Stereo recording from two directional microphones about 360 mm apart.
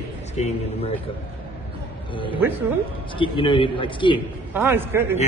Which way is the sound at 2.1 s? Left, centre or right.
Centre.